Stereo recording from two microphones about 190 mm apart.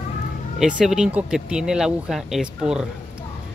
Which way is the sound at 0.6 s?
5° right (ahead or behind).